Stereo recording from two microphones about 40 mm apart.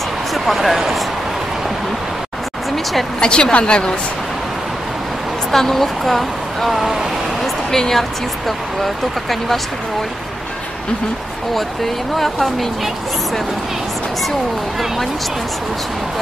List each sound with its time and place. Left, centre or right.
0.3 s speech: centre
2.7 s a sound: centre
3.2 s a woman's voice: left
5.5 s speech: centre
7.7 s a woman's voice: centre
11.5 s speech: centre